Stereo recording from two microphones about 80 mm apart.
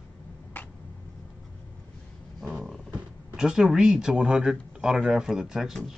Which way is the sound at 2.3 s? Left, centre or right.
Centre.